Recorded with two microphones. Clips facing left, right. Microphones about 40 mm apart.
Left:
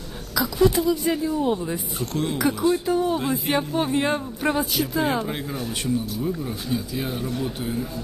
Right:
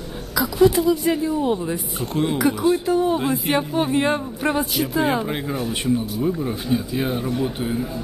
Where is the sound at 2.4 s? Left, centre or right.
Centre.